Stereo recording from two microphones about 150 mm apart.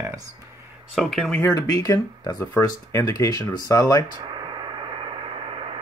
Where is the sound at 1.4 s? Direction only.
25° left (ahead or behind).